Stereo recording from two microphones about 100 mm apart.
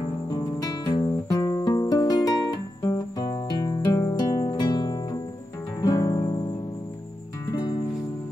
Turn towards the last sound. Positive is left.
turn(degrees=40)  # may be behind; listen again after turning